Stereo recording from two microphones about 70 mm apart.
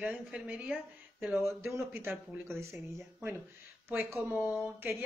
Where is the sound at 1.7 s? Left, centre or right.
Right.